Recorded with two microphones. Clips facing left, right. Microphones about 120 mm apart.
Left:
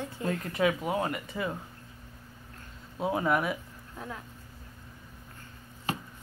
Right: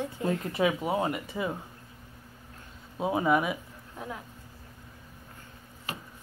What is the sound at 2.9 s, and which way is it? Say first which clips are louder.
Speech: right 2 dB; 15° right (ahead or behind).